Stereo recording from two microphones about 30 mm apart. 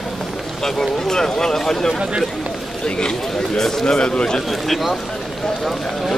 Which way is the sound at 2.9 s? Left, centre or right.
Left.